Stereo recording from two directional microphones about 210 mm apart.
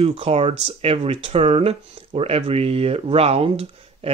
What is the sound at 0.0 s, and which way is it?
Speech, 30° right (ahead or behind).